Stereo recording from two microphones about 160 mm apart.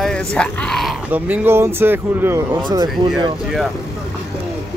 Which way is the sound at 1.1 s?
10° right (ahead or behind).